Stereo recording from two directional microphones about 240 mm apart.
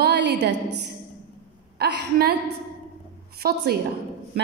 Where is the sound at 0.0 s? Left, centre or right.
Right.